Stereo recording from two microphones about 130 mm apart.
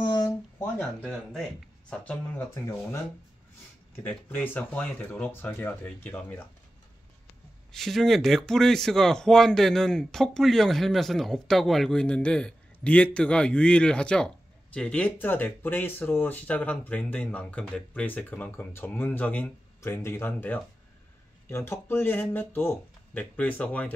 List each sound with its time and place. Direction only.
0.0 s a sound: 35° left (ahead or behind)
0.7 s speech: 5° left (ahead or behind)
7.7 s speech: centre (ahead or behind)